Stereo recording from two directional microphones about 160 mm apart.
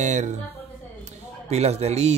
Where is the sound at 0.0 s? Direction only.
50° right (ahead or behind).